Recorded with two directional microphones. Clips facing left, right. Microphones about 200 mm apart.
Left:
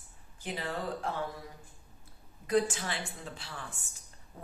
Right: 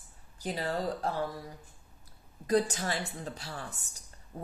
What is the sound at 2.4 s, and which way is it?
A woman's voice, 35° right (ahead or behind).